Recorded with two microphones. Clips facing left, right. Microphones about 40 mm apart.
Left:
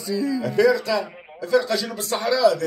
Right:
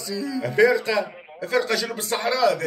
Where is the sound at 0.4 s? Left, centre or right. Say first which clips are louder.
Right 2 dB; right.